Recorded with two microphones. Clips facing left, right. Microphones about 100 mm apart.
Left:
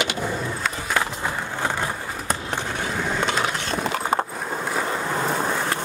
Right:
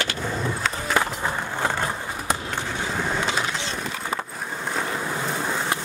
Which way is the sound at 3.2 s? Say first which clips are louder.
Left 2 dB; 55° left (ahead or behind).